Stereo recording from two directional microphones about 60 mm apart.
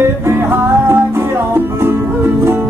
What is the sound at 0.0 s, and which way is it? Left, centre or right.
Music, right.